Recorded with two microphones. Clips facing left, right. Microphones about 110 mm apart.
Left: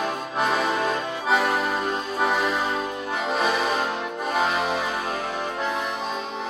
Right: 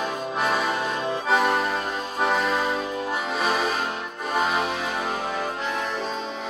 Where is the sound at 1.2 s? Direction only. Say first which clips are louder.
Even; centre (ahead or behind).